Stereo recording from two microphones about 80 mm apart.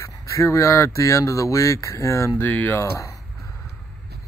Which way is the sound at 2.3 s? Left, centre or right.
Left.